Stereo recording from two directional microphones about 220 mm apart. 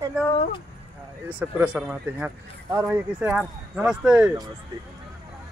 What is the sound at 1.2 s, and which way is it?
Speech, 5° right (ahead or behind).